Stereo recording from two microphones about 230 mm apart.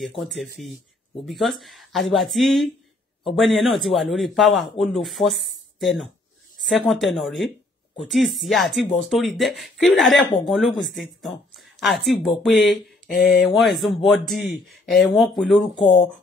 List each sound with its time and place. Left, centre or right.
0.0 s a man's voice: centre
13.1 s speech: left
13.4 s a man's voice: centre